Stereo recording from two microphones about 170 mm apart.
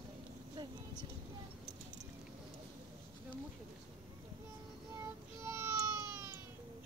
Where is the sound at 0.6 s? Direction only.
25° right (ahead or behind).